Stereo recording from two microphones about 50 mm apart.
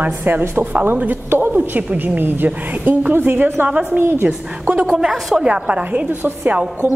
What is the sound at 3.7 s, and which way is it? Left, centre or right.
Speech, right.